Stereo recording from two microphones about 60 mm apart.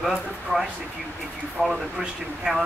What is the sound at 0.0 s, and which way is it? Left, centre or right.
Speech, centre.